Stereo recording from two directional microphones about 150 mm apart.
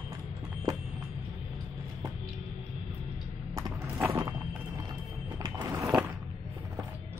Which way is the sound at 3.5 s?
20° right (ahead or behind).